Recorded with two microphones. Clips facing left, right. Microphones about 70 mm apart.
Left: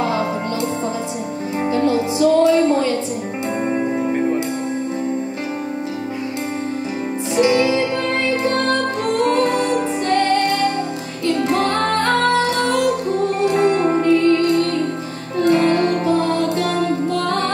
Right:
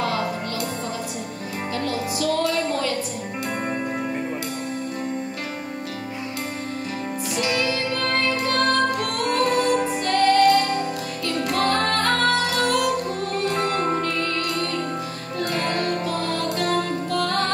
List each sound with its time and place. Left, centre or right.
1.7 s music: left
7.3 s music: left
9.2 s music: left